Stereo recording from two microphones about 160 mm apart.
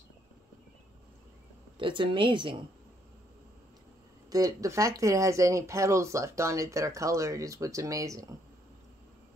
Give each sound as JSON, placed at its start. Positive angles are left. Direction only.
{"t": 1.8, "sound": "a woman's voice", "side_deg": -30}
{"t": 4.3, "sound": "speech", "side_deg": -20}